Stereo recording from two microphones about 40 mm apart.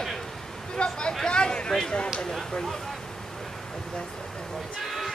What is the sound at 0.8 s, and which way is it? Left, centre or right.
Vehicle, left.